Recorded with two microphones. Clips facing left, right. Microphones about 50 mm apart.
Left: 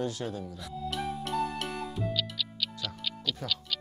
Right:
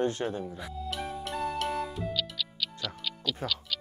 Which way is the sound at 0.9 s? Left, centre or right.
Centre.